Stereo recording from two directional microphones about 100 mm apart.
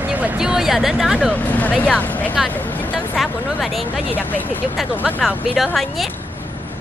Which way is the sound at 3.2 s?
Centre (ahead or behind).